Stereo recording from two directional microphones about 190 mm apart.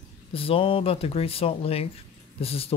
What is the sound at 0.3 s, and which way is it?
Speech, 30° left (ahead or behind).